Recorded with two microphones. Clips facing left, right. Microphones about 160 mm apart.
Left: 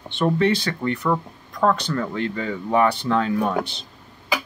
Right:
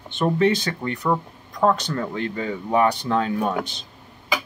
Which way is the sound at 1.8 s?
40° right (ahead or behind).